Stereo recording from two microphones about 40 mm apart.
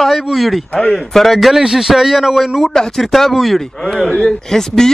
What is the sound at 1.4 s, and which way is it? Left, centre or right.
A man's voice, centre.